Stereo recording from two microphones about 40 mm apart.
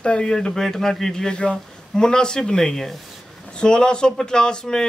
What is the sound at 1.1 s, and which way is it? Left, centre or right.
Speech, centre.